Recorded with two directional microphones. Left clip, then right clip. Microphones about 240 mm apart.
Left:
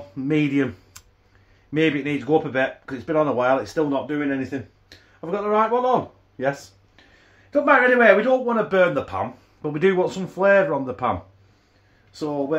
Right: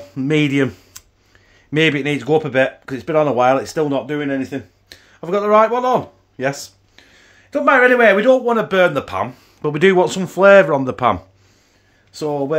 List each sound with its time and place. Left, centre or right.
0.1 s speech: right
1.7 s speech: right
7.5 s speech: right